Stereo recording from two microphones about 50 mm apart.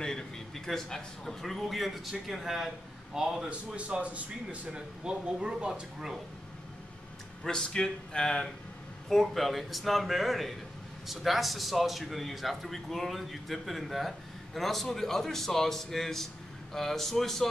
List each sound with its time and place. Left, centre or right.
0.7 s a man's voice: centre
3.4 s speech: right
7.4 s speech: centre
9.1 s a man's voice: centre